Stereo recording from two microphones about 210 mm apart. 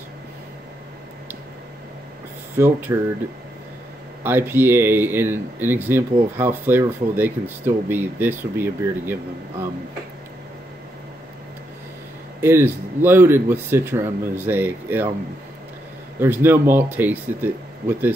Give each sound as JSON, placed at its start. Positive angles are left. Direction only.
{"t": 2.6, "sound": "speech", "side_deg": -10}
{"t": 4.2, "sound": "speech", "side_deg": -10}
{"t": 12.4, "sound": "speech", "side_deg": -10}
{"t": 16.2, "sound": "speech", "side_deg": -10}